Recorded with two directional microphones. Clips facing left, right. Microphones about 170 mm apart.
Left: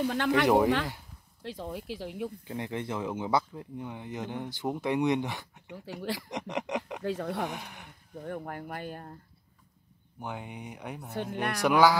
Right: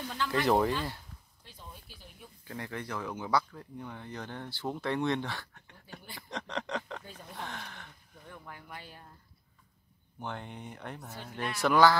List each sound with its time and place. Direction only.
0.1 s speech: 70° left (ahead or behind)
1.4 s speech: 90° left
2.4 s speech: 20° left (ahead or behind)
5.7 s speech: 90° left
6.3 s speech: 20° left (ahead or behind)
7.0 s speech: 85° left
7.4 s speech: 15° left (ahead or behind)
8.2 s speech: 55° left (ahead or behind)
10.2 s speech: 10° left (ahead or behind)
11.1 s speech: 65° left (ahead or behind)
11.6 s speech: 10° left (ahead or behind)